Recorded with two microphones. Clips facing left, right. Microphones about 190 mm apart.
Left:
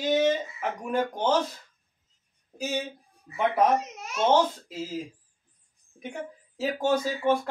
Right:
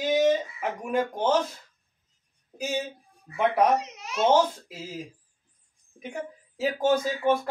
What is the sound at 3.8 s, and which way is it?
Speech, 50° left (ahead or behind).